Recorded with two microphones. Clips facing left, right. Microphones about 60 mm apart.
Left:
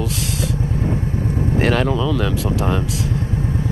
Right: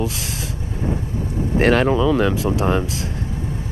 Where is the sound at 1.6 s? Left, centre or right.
Centre.